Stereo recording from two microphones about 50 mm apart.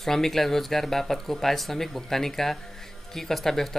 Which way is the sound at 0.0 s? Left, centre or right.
Centre.